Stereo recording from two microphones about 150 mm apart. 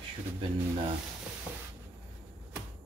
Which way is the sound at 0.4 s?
35° right (ahead or behind).